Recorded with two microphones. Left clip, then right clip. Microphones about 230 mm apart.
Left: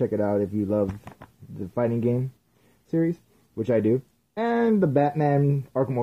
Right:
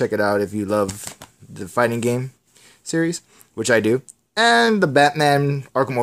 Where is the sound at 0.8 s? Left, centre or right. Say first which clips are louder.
Right 4 dB; right.